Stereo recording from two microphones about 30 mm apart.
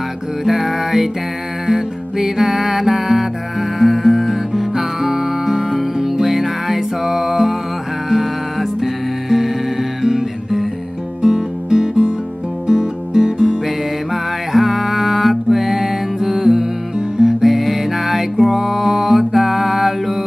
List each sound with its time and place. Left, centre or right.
0.5 s music: centre
11.2 s music: right
13.7 s music: centre